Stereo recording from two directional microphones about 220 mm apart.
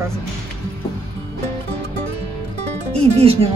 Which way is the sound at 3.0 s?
25° right (ahead or behind).